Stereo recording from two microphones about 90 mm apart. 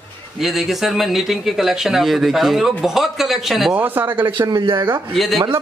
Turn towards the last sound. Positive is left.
turn(degrees=0)  # may be behind; listen again after turning